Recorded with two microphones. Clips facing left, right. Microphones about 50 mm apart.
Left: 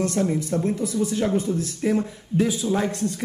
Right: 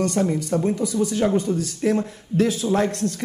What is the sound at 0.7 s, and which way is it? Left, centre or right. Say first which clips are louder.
Speech: right 2 dB; right.